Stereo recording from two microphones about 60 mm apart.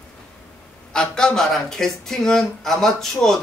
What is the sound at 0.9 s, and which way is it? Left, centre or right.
Speech, centre.